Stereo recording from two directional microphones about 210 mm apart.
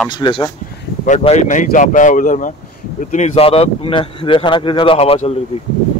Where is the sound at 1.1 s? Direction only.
30° left (ahead or behind).